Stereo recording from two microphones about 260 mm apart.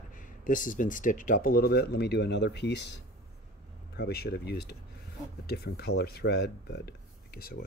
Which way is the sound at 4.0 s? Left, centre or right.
Left.